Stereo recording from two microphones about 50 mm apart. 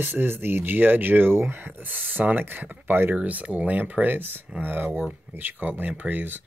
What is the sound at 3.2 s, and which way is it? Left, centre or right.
Speech, right.